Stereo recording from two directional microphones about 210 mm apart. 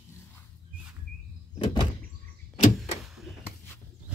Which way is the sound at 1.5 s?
20° left (ahead or behind).